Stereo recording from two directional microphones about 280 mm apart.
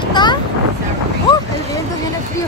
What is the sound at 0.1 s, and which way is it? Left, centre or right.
Vehicle, centre.